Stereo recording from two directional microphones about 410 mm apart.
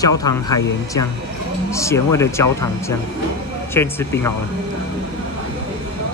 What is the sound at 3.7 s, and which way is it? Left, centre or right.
Speech, centre.